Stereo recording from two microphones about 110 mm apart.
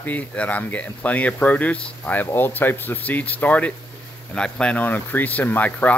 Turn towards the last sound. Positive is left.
turn(degrees=15)  # may be behind; listen again after turning